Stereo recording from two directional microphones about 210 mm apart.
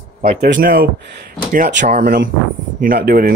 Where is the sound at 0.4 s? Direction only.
40° right (ahead or behind).